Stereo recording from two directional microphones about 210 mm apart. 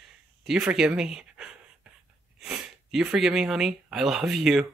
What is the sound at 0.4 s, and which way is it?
Speech, 5° right (ahead or behind).